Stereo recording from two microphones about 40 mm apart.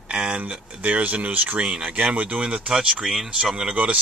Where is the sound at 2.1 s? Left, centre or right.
Right.